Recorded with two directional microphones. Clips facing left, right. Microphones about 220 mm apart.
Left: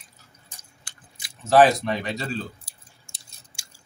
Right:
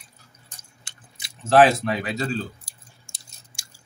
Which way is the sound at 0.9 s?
25° right (ahead or behind).